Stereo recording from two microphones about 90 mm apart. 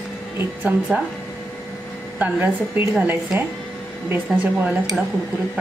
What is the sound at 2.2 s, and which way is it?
A woman's voice, 20° right (ahead or behind).